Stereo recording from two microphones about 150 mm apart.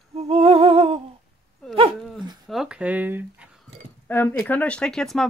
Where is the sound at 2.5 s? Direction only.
5° right (ahead or behind).